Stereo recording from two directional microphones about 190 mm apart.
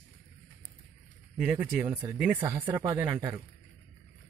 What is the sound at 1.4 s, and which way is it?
A man's voice, 10° right (ahead or behind).